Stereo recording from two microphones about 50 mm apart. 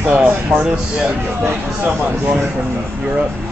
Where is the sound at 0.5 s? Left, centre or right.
Right.